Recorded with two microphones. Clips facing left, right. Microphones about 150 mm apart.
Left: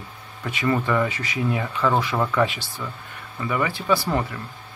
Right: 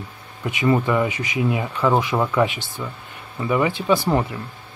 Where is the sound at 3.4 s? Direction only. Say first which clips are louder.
Right 4 dB; 20° right (ahead or behind).